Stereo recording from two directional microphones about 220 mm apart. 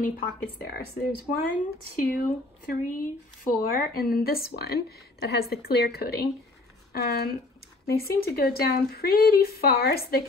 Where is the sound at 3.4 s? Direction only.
45° left (ahead or behind).